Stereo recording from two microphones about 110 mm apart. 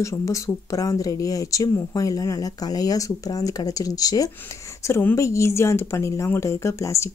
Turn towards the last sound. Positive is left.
turn(degrees=25)  # may be behind; listen again after turning